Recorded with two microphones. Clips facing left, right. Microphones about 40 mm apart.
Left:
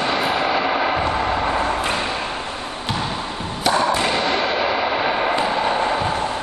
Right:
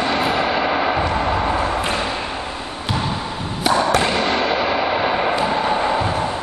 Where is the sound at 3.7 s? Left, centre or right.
Centre.